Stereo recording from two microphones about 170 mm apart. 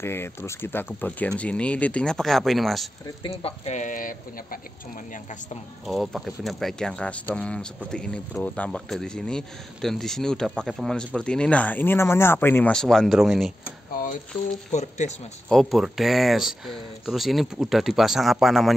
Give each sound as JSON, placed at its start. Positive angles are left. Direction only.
{"t": 0.0, "sound": "speech", "side_deg": 15}
{"t": 3.2, "sound": "speech", "side_deg": 35}
{"t": 5.9, "sound": "speech", "side_deg": 0}
{"t": 14.7, "sound": "speech", "side_deg": 45}
{"t": 15.5, "sound": "speech", "side_deg": 0}